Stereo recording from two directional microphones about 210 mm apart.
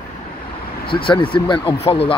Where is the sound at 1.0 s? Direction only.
25° left (ahead or behind).